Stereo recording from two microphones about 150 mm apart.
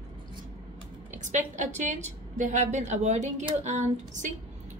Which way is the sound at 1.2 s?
55° right (ahead or behind).